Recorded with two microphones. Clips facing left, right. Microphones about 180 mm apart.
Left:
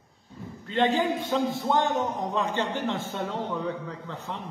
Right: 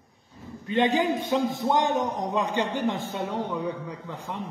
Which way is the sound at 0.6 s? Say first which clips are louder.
Right 1 dB; 15° right (ahead or behind).